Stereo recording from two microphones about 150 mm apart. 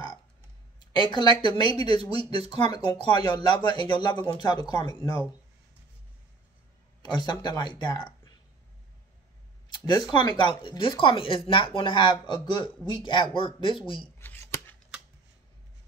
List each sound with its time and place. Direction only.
0.7 s speech: 30° left (ahead or behind)
7.0 s speech: 30° left (ahead or behind)
9.7 s a sound: 30° left (ahead or behind)
10.1 s speech: 30° left (ahead or behind)
14.1 s shuffling cards: 15° left (ahead or behind)